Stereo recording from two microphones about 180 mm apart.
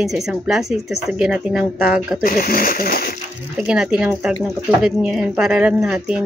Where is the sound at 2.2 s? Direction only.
50° left (ahead or behind).